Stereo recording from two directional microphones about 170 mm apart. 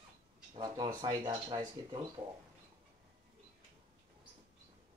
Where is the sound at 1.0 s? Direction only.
25° right (ahead or behind).